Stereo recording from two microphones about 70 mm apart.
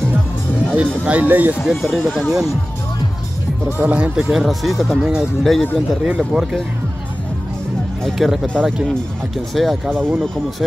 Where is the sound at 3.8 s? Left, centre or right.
Centre.